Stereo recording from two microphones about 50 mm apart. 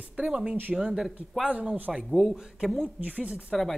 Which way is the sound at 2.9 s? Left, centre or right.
Right.